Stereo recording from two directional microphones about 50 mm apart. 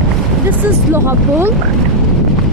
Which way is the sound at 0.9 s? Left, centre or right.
Right.